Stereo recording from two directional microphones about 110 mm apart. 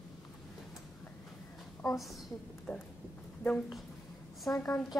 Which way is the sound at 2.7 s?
10° left (ahead or behind).